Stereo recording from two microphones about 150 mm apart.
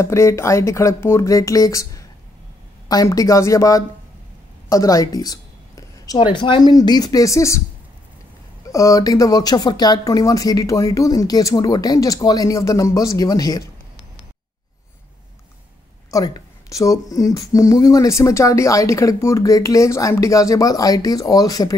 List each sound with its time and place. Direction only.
0.0 s a woman's voice: 20° left (ahead or behind)
8.7 s speech: 20° left (ahead or behind)
16.1 s speech: 25° left (ahead or behind)